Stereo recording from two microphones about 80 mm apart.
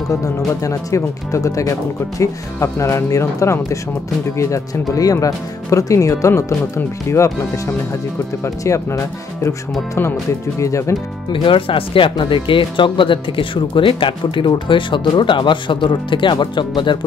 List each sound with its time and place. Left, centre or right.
0.1 s speech: left
4.9 s speech: left
10.6 s speech: left
11.3 s speech: left